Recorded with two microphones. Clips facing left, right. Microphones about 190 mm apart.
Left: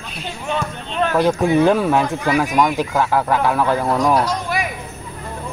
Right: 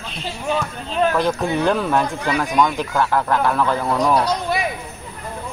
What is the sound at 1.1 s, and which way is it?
Speech, 15° left (ahead or behind).